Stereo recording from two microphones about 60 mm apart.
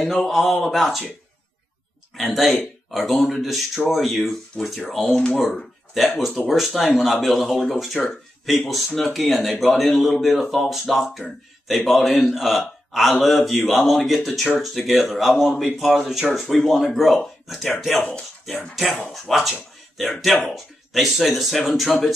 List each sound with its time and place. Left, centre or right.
0.0 s speech: centre
2.1 s speech: centre
5.1 s speech: centre
5.5 s a sound: centre
6.5 s speech: centre
19.1 s speech: centre